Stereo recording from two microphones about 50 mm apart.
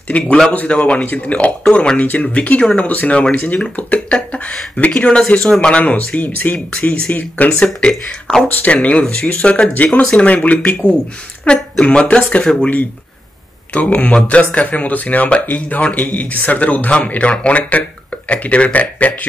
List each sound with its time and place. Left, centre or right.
0.1 s speech: left; by 5.8 s centre
5.8 s speech: left
7.4 s speech: left
7.9 s speech: centre
8.6 s speech: left
11.4 s speech: left
13.7 s speech: left